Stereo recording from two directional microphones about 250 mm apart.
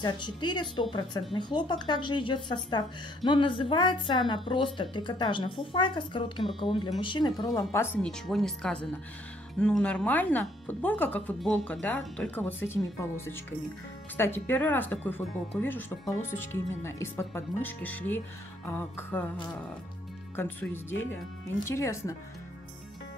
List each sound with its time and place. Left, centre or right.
0.0 s speech: centre
6.4 s speech: centre
7.0 s speech: centre
20.3 s speech: centre